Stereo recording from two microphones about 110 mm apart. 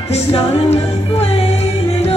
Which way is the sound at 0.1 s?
70° left (ahead or behind).